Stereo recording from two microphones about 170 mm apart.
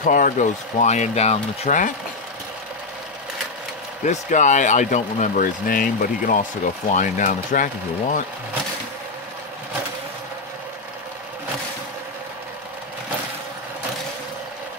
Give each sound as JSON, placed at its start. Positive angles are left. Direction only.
{"t": 0.0, "sound": "speech", "side_deg": 50}
{"t": 4.0, "sound": "speech", "side_deg": 45}